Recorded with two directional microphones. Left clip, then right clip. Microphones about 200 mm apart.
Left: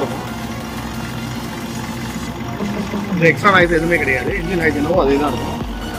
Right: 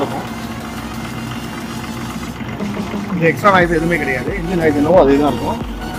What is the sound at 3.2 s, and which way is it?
Speech, 55° right (ahead or behind).